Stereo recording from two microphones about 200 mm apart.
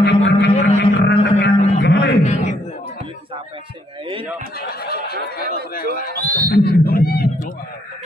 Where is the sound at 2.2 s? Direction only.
35° left (ahead or behind).